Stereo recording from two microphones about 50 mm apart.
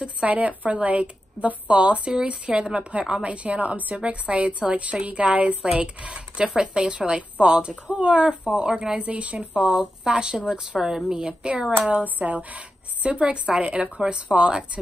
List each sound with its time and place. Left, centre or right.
0.0 s speech: right
9.0 s speech: right
9.6 s speech: centre
11.9 s speech: right